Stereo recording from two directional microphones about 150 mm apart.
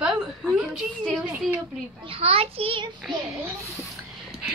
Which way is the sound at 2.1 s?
40° right (ahead or behind).